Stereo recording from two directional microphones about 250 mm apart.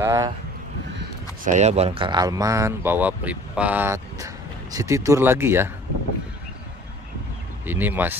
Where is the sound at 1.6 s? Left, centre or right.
Right; by 5.6 s centre.